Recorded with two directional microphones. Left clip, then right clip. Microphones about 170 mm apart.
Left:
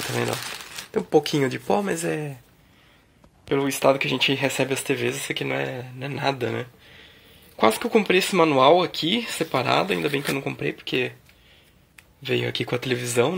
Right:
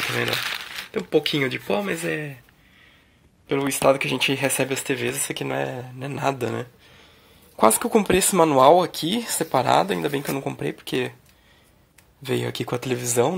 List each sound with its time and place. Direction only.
0.9 s speech: 10° left (ahead or behind)
3.4 s speech: centre (ahead or behind); by 11.1 s 15° right (ahead or behind)
12.2 s speech: 15° right (ahead or behind)